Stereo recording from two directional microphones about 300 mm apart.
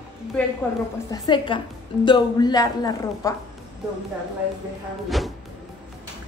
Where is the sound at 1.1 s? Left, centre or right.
Centre.